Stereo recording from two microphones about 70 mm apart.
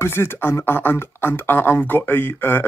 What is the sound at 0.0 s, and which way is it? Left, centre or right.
Speech, left.